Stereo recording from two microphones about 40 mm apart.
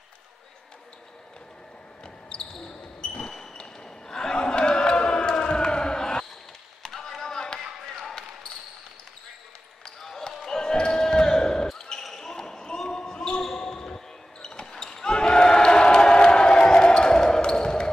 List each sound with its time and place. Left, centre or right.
2.7 s basketball bounce: left
3.2 s basketball bounce: centre
6.8 s a sound: centre
7.7 s basketball bounce: centre
9.8 s basketball bounce: centre